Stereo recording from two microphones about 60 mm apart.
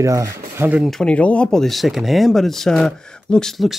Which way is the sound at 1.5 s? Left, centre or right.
Centre.